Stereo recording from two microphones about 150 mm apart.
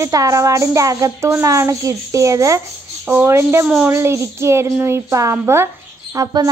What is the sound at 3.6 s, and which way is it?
Speech, 5° right (ahead or behind).